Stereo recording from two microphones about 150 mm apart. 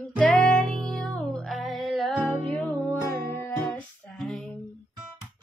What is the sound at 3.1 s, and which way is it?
Music, 15° left (ahead or behind).